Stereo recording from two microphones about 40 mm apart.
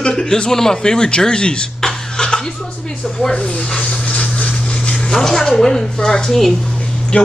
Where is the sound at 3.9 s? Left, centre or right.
Left.